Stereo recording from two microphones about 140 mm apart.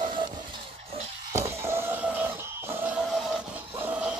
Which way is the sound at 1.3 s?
20° right (ahead or behind).